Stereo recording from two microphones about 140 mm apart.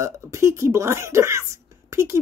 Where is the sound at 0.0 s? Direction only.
20° right (ahead or behind).